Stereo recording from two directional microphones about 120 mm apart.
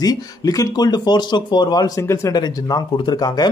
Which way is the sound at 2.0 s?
25° left (ahead or behind).